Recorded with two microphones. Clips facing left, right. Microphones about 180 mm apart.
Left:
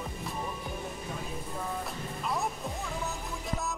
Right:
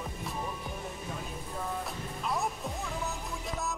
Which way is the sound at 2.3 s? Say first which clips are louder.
Even; centre (ahead or behind).